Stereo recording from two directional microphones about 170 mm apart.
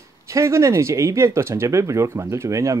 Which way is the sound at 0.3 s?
15° right (ahead or behind).